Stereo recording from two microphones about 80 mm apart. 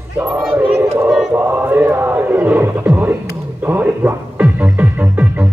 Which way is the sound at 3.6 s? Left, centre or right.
Right.